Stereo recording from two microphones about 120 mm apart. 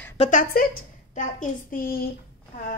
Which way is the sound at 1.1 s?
90° left.